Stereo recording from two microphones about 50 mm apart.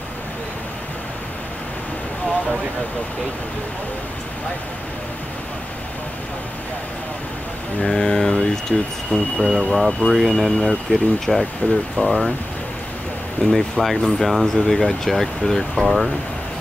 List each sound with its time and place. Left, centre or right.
7.8 s speech: centre
13.5 s speech: centre
15.8 s speech: centre